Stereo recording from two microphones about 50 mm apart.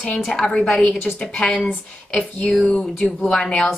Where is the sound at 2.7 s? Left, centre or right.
Left.